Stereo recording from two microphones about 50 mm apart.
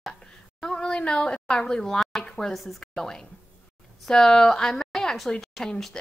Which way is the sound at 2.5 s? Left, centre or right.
Centre.